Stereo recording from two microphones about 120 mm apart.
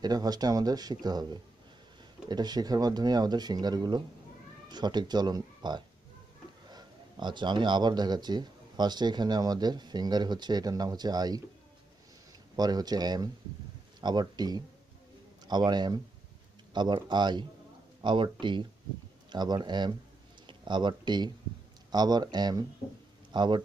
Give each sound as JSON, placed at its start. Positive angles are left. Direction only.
{"t": 0.0, "sound": "speech", "side_deg": -35}
{"t": 12.5, "sound": "a man's voice", "side_deg": -35}